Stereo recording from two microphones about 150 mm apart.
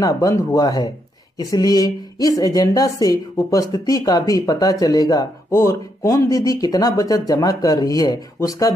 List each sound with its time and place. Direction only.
0.0 s a woman's voice: 25° left (ahead or behind)